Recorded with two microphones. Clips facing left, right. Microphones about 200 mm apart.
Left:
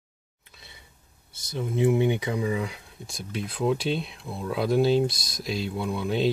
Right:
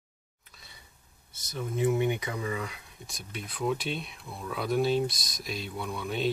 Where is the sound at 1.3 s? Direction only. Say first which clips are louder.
Left 4 dB; 30° left (ahead or behind).